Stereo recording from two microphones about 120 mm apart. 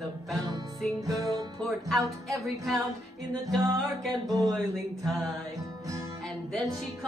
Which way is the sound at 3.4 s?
25° right (ahead or behind).